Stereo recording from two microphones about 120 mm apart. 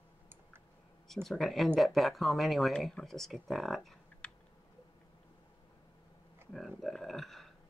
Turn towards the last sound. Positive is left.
turn(degrees=0)  # may be behind; listen again after turning